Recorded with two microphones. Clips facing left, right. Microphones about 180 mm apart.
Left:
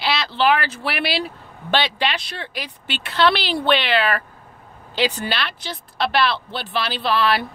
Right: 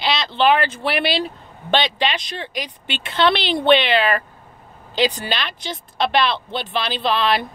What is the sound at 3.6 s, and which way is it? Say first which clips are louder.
Speech: right 5 dB; 20° right (ahead or behind).